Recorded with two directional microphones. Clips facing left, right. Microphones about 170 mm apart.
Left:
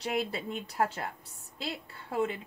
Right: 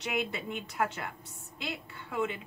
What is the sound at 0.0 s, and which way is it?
A woman's voice, 35° left (ahead or behind).